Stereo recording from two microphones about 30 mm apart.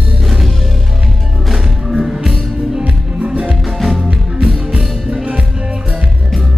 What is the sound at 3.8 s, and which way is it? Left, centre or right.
Music, centre.